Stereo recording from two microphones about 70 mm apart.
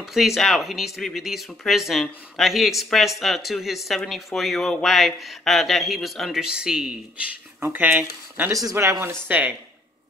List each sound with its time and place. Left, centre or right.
0.0 s speech: centre
6.4 s speech: centre
7.6 s speech: right
9.3 s speech: centre